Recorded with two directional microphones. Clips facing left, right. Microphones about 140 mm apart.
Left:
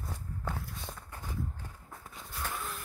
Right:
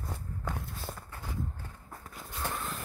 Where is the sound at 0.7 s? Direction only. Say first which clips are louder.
Right 2 dB; 5° right (ahead or behind).